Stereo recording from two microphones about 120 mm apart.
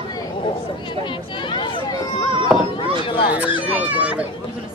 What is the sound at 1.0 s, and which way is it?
Speech, 40° left (ahead or behind).